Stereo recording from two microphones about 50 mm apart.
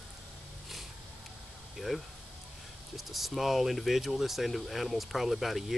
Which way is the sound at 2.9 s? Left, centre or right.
Centre.